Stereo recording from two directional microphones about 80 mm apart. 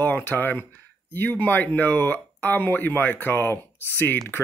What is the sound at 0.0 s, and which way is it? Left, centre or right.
Speech, left.